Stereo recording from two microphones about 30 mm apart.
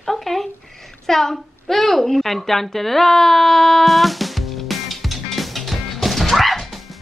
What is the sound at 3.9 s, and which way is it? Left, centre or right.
Music, centre.